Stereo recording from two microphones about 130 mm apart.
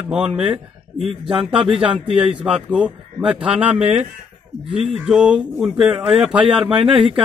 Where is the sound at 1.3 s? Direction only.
45° right (ahead or behind).